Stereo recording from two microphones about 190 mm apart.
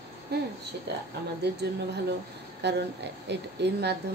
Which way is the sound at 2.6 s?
65° right (ahead or behind).